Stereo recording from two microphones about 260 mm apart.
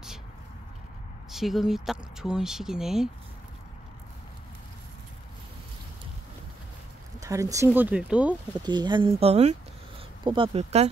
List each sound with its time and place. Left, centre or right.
1.3 s speech: centre
7.2 s speech: centre
8.6 s speech: centre